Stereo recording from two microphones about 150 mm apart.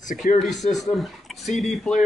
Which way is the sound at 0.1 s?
60° left (ahead or behind).